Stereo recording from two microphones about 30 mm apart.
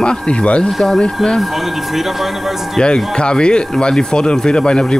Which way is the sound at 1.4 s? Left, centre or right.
Centre.